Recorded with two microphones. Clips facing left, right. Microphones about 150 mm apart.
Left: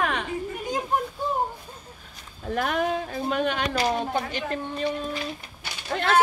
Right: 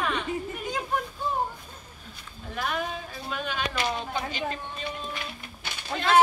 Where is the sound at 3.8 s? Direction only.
45° left (ahead or behind).